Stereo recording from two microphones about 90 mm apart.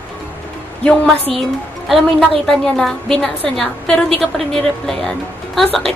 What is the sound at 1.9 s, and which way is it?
A woman's voice, centre (ahead or behind).